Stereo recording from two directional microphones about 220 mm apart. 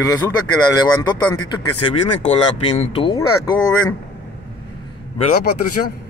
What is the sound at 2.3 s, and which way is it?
Speech, 30° left (ahead or behind).